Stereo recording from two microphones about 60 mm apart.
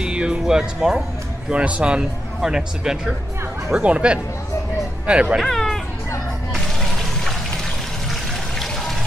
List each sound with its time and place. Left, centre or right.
0.0 s speech: centre
1.5 s speech: right
5.4 s a sound: centre
8.1 s water: centre